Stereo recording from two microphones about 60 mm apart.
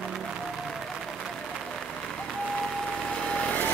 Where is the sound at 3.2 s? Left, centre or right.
Centre.